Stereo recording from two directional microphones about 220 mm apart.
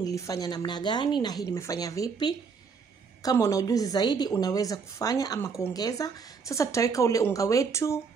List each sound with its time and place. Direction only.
0.0 s a woman's voice: 15° left (ahead or behind)